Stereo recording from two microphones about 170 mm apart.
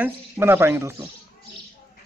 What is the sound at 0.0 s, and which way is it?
A man's voice, 15° right (ahead or behind).